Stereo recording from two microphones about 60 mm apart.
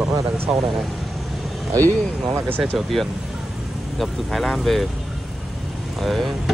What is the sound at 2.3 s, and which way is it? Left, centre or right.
Speech, right.